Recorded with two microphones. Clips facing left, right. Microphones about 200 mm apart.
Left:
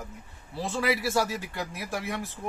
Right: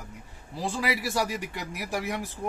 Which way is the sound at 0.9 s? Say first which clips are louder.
Left 3 dB; 15° right (ahead or behind).